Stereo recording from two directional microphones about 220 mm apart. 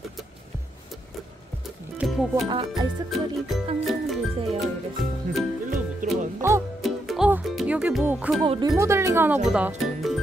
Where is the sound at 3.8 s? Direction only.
Centre (ahead or behind).